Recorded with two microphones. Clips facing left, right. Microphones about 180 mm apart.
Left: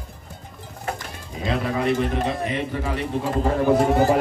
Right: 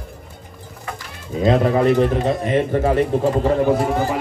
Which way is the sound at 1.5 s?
45° right (ahead or behind).